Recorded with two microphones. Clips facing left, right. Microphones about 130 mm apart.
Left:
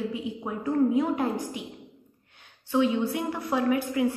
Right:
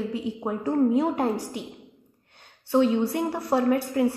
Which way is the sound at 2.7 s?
50° right (ahead or behind).